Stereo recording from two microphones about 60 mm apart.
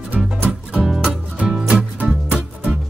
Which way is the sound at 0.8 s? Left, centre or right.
Centre.